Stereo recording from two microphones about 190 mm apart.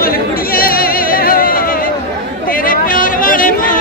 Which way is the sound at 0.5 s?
50° left (ahead or behind).